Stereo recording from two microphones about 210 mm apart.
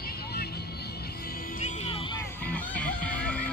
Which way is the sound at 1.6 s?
30° left (ahead or behind).